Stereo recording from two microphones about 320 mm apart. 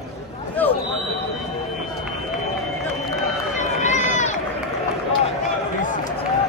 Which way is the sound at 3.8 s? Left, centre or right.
Left.